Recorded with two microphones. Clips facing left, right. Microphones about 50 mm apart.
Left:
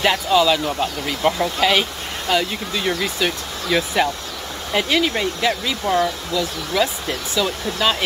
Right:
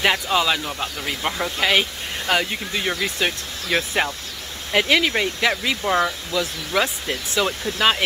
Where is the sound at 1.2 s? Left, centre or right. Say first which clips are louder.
Left 4 dB; centre.